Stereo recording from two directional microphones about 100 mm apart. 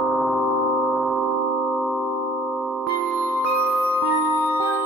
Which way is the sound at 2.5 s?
Centre (ahead or behind).